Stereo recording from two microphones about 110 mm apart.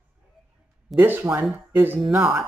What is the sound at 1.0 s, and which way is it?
A woman's voice, 20° right (ahead or behind).